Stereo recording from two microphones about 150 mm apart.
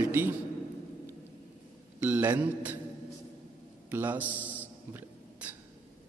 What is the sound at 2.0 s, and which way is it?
Speech, 15° right (ahead or behind).